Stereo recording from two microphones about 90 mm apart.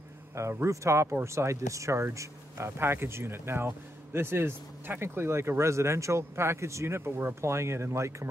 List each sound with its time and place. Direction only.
0.4 s speech: 30° right (ahead or behind)